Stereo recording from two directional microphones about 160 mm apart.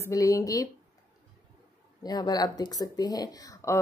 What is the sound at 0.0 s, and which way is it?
Speech, 20° left (ahead or behind).